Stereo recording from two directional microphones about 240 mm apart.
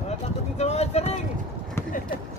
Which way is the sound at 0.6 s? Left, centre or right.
Left.